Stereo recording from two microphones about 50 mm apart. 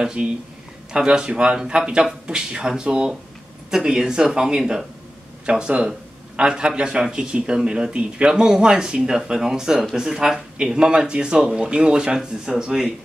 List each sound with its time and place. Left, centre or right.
0.0 s a man's voice: centre